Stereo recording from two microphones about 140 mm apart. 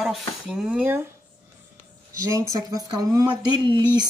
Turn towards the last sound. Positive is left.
turn(degrees=-35)  # may be behind; listen again after turning